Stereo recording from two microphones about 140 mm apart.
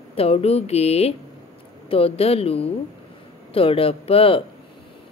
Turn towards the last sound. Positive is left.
turn(degrees=40)  # may be behind; listen again after turning